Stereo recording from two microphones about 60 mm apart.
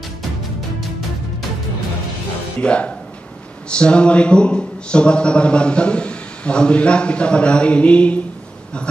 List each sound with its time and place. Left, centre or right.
2.6 s speech: centre